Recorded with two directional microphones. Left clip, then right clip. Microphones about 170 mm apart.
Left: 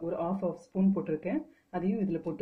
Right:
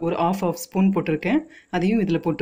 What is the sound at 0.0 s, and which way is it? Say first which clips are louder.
Speech: right 10 dB; 85° right.